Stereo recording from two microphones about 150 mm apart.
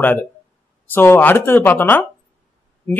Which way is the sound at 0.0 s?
10° left (ahead or behind).